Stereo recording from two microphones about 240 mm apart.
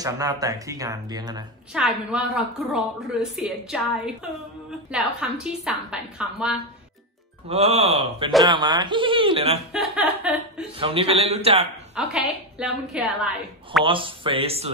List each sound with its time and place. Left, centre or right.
0.0 s speech: centre
1.7 s a woman's voice: centre
7.4 s speech: right
9.7 s a woman's voice: centre
10.8 s speech: right
11.9 s a woman's voice: centre
13.8 s speech: right